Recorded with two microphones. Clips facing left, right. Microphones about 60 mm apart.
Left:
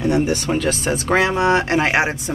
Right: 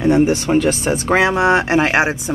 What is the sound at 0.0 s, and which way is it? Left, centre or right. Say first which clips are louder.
Speech: right 5 dB; right.